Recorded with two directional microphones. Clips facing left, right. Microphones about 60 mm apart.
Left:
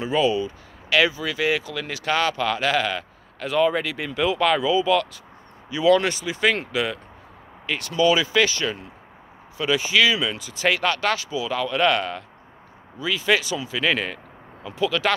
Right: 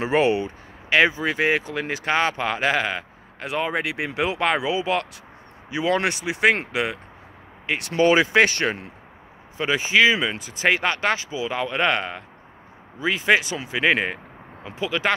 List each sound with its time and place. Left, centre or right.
0.0 s speech: right
0.8 s speech: right
4.1 s speech: right
4.4 s speech: right
7.6 s speech: right
7.9 s speech: right
9.6 s speech: right